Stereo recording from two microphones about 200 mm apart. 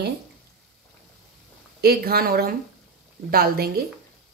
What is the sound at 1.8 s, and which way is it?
Speech, 50° right (ahead or behind).